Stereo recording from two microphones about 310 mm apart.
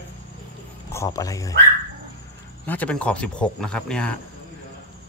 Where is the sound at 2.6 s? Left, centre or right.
Centre.